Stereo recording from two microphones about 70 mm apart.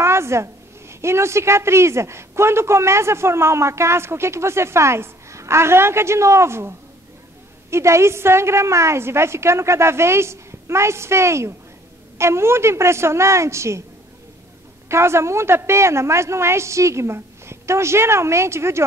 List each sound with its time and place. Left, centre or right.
0.0 s a woman's voice: right
7.7 s a woman's voice: right
14.9 s a woman's voice: right